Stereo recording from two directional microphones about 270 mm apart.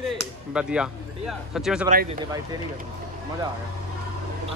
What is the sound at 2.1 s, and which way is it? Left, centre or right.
Speech, centre.